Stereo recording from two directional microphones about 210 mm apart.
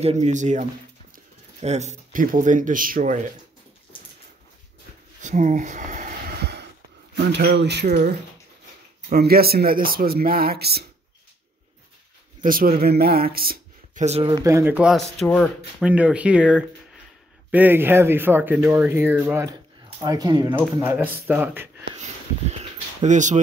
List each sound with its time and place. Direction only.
0.0 s speech: 30° right (ahead or behind)
5.2 s a sound: 35° right (ahead or behind); by 6.7 s 55° right (ahead or behind)
7.3 s speech: 55° right (ahead or behind)
12.4 s speech: 45° right (ahead or behind)
14.0 s speech: 25° right (ahead or behind); by 15.9 s 5° left (ahead or behind)
15.9 s speech: 5° right (ahead or behind)
20.5 s speech: 10° right (ahead or behind)
22.5 s bird: 35° right (ahead or behind)